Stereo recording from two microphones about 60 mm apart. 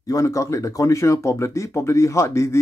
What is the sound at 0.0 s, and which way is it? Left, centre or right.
Speech, left.